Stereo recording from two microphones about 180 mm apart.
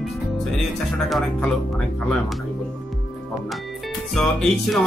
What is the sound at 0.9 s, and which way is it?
Speech, centre (ahead or behind).